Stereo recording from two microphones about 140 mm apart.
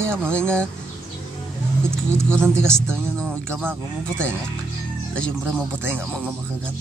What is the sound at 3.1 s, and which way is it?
Speech, 5° left (ahead or behind).